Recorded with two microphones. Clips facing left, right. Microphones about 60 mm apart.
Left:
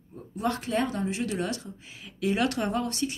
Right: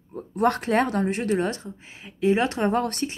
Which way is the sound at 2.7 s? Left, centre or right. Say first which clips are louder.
Right 4 dB; right.